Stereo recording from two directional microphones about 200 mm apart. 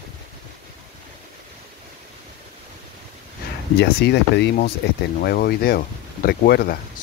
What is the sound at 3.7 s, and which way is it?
Speech, 55° left (ahead or behind).